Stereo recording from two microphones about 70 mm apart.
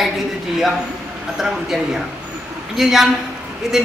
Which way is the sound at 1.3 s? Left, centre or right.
Centre.